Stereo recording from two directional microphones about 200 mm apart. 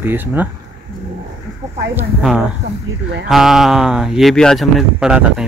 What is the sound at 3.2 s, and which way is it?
Speech, centre (ahead or behind).